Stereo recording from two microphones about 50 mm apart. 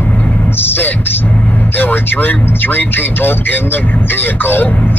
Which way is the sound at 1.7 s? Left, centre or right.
Left.